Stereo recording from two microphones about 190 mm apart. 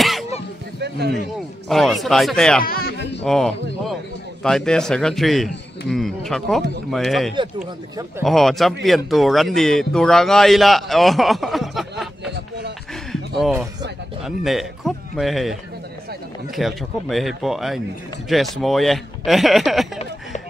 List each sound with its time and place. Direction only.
0.0 s a sound: centre (ahead or behind)
0.7 s a man's voice: 60° right (ahead or behind)
1.7 s a man's voice: centre (ahead or behind)
2.6 s a sound: 50° left (ahead or behind)
3.3 s a man's voice: centre (ahead or behind)
14.2 s a man's voice: centre (ahead or behind)
16.5 s a man's voice: centre (ahead or behind)